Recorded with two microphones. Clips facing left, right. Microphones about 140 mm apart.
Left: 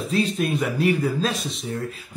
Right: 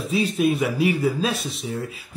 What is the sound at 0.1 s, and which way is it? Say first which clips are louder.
Speech: right 3 dB; 5° right (ahead or behind).